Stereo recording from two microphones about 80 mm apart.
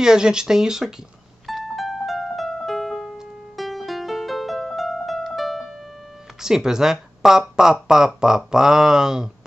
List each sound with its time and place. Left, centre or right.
0.0 s speech: centre
1.5 s music: centre
6.4 s speech: centre